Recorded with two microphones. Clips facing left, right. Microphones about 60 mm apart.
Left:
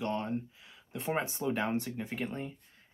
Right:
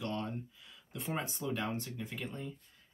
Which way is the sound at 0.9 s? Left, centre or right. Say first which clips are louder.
Left 5 dB; left.